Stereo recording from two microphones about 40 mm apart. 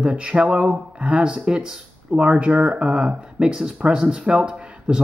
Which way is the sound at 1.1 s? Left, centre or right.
Centre.